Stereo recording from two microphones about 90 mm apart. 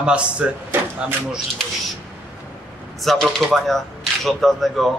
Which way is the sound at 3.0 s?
Centre (ahead or behind).